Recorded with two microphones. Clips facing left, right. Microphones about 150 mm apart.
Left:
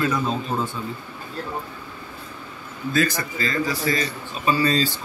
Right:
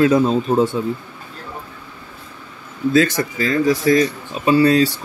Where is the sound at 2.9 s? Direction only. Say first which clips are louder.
Right 6 dB; 85° right.